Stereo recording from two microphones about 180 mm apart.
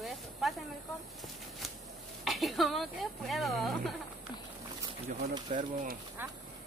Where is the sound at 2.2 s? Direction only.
Centre (ahead or behind).